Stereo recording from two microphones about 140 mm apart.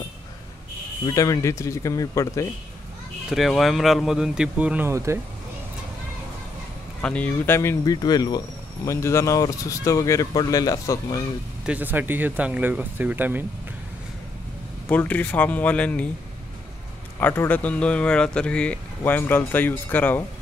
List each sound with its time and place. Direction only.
1.0 s speech: 25° left (ahead or behind)
3.3 s speech: centre (ahead or behind); by 5.2 s 20° right (ahead or behind)
7.0 s speech: 10° left (ahead or behind); by 11.2 s 25° left (ahead or behind)
11.6 s speech: 10° right (ahead or behind)
14.9 s speech: 10° left (ahead or behind)
17.2 s speech: 15° left (ahead or behind)